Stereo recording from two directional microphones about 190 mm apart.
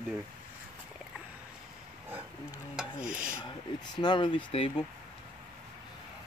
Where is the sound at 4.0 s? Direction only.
25° left (ahead or behind).